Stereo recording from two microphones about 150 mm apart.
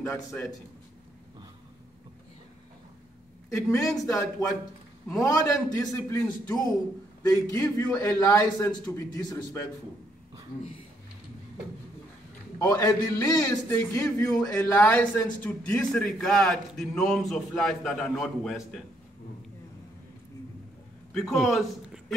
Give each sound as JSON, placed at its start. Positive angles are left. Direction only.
{"t": 0.3, "sound": "a man's voice", "side_deg": 15}
{"t": 3.4, "sound": "a woman's voice", "side_deg": 20}
{"t": 12.5, "sound": "a man's voice", "side_deg": 20}
{"t": 21.1, "sound": "a man's voice", "side_deg": 0}